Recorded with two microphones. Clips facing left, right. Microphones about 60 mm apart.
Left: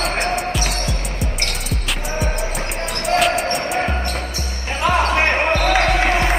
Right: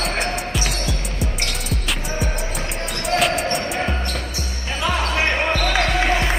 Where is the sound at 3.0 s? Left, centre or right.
Centre.